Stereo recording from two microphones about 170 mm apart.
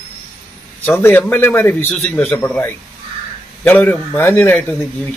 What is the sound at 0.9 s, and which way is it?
A man's voice, 10° left (ahead or behind).